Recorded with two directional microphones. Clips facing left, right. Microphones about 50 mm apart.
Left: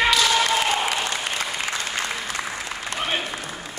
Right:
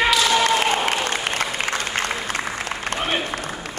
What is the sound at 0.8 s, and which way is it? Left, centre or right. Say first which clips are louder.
Applause: right 3 dB; right.